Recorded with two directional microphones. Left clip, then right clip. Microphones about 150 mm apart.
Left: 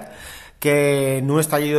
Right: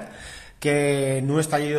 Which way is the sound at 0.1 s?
20° left (ahead or behind).